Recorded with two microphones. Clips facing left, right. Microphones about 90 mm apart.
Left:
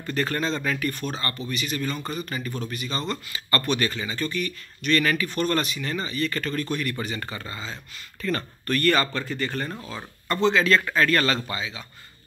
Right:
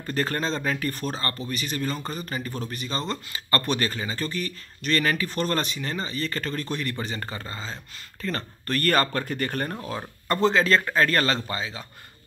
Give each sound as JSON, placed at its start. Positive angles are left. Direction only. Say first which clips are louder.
{"t": 0.0, "sound": "speech", "louder": "left 1 dB", "side_deg": -35}